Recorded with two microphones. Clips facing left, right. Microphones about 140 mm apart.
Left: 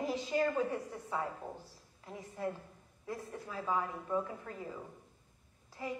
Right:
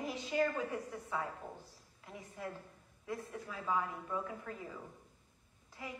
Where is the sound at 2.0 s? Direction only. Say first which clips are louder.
Left 6 dB; 35° left (ahead or behind).